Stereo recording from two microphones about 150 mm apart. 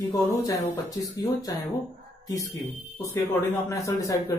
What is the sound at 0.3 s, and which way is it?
Speech, 25° left (ahead or behind).